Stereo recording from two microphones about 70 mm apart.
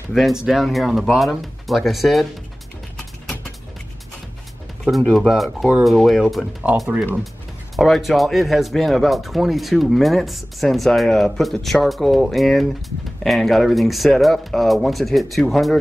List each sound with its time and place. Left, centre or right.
0.1 s speech: centre
3.0 s a sound: centre
4.8 s speech: centre
6.6 s speech: centre
7.7 s speech: centre